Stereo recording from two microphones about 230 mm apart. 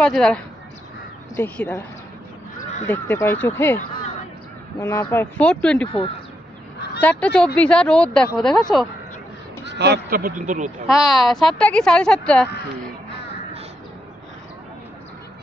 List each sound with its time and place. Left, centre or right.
0.0 s a woman's voice: centre
2.9 s speech: centre
7.0 s a woman's voice: centre
9.7 s speech: right
10.9 s a woman's voice: centre